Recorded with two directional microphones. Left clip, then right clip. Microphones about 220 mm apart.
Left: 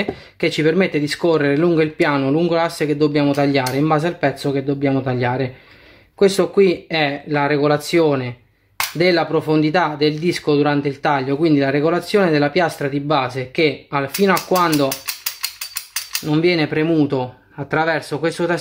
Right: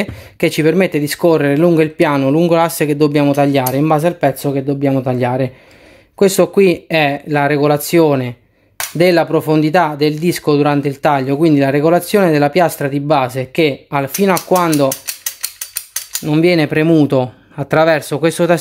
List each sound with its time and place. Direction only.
0.0 s speech: 40° right (ahead or behind)
16.3 s speech: 40° right (ahead or behind)